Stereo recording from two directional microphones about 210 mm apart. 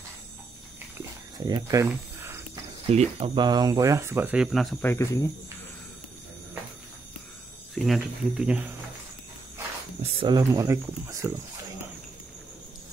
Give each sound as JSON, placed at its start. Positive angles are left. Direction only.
{"t": 1.5, "sound": "cricket", "side_deg": -15}
{"t": 2.9, "sound": "speech", "side_deg": -30}
{"t": 4.9, "sound": "speech", "side_deg": 15}
{"t": 7.7, "sound": "speech", "side_deg": 0}
{"t": 10.1, "sound": "speech", "side_deg": -20}